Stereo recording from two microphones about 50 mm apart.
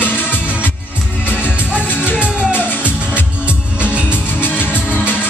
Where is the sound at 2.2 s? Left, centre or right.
Right.